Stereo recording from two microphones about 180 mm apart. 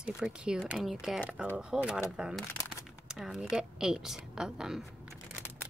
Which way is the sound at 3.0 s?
5° right (ahead or behind).